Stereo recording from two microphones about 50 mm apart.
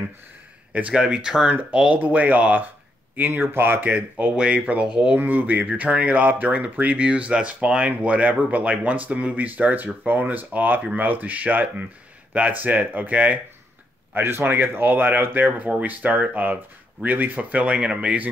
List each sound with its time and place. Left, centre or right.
0.9 s speech: centre
1.5 s speech: right
4.2 s speech: right
5.2 s speech: right
14.1 s speech: right